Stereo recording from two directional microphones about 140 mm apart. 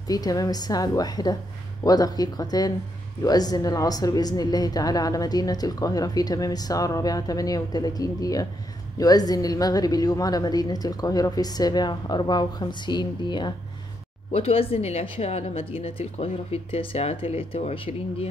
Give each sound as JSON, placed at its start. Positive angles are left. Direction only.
{"t": 0.0, "sound": "a woman's voice", "side_deg": 25}